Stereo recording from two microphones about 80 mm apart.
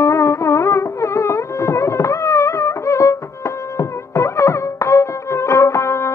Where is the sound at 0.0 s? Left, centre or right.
Left.